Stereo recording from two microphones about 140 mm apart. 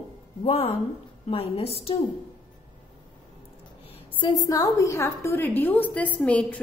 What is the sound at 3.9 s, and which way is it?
A woman's voice, 35° left (ahead or behind).